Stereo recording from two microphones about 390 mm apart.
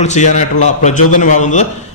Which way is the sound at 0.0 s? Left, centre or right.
Centre.